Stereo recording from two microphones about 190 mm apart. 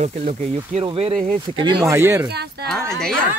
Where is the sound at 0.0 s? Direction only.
30° right (ahead or behind).